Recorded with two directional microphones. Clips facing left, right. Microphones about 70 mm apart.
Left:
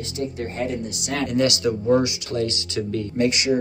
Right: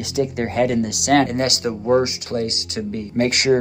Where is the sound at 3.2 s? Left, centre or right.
Right.